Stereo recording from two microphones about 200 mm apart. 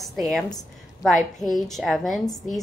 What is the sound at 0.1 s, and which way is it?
Speech, centre (ahead or behind).